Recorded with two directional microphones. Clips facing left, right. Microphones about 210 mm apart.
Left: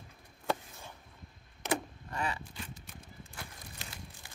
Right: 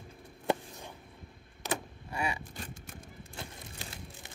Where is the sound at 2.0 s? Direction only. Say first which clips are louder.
Right 2 dB; 10° right (ahead or behind).